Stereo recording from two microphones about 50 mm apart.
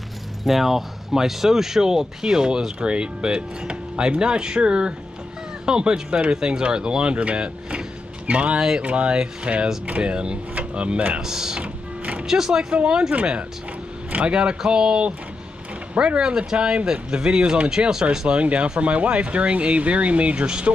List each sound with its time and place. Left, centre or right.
0.4 s speech: centre; by 8.5 s right
8.5 s speech: centre
8.8 s speech: right
11.1 s speech: centre
11.6 s music: right
12.3 s speech: centre